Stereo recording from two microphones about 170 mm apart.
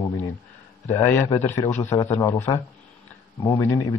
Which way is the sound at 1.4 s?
15° left (ahead or behind).